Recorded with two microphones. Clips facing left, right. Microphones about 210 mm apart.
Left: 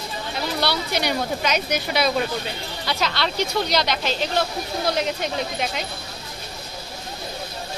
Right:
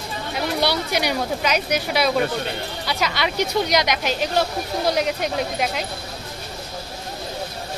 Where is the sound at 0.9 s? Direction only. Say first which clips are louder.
Right 1 dB; 10° right (ahead or behind).